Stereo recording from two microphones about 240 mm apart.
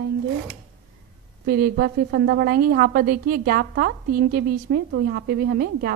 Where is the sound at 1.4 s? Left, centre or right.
Right.